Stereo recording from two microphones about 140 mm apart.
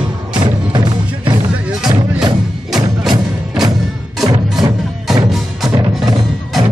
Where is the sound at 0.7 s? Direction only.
30° right (ahead or behind).